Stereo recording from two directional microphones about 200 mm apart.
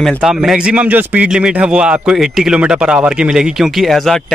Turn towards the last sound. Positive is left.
turn(degrees=0)  # may be behind; listen again after turning